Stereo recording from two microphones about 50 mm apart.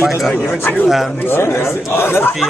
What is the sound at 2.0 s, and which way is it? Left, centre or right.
Speech, left.